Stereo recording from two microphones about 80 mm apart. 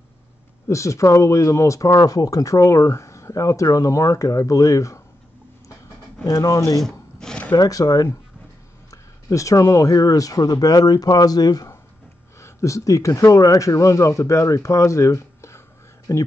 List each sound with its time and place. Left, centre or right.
0.7 s speech: left
6.2 s speech: left
6.8 s rub: centre
7.5 s speech: left
12.4 s speech: left